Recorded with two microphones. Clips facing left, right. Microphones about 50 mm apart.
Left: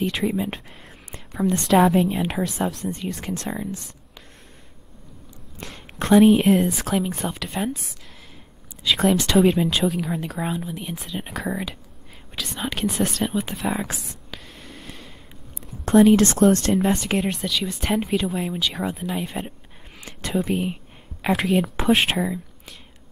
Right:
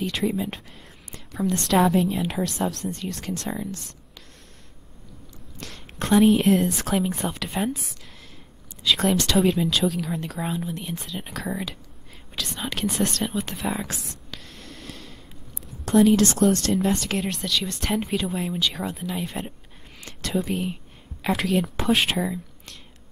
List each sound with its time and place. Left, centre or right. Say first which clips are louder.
0.0 s speech: left 2 dB; centre
2.0 s a woman's voice: left 2 dB; left
5.6 s speech: left 2 dB; centre
8.8 s speech: left 2 dB; centre
14.3 s whispering: left 3 dB; centre
15.9 s a woman's voice: left 3 dB; left
16.7 s speech: left 3 dB; centre